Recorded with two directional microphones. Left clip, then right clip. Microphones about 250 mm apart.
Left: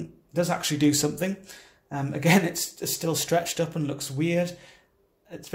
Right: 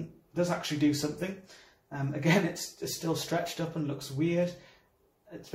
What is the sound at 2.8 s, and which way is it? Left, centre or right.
Speech, left.